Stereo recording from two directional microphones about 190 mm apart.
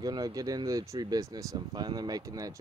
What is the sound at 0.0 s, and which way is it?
Speech, 20° right (ahead or behind).